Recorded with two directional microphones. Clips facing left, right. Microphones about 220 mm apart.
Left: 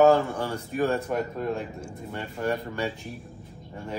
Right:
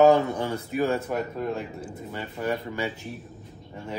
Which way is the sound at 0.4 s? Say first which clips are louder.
Right 1 dB; 10° right (ahead or behind).